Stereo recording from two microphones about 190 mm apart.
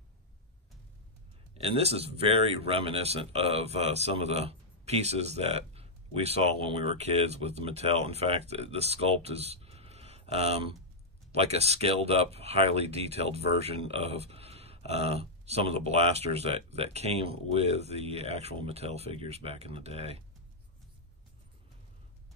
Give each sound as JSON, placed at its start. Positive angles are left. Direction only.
{"t": 1.6, "sound": "speech", "side_deg": -35}